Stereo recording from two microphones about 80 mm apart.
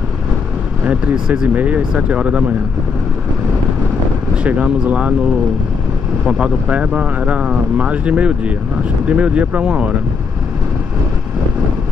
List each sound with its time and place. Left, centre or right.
0.8 s speech: centre
4.4 s speech: centre
6.2 s speech: centre